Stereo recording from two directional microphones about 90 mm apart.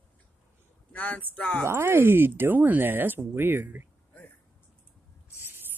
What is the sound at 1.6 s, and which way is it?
Speech, 30° right (ahead or behind).